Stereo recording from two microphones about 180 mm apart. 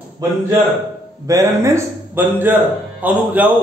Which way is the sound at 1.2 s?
15° right (ahead or behind).